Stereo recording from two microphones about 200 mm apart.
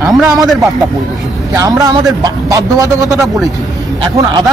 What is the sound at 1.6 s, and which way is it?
Speech, 15° right (ahead or behind).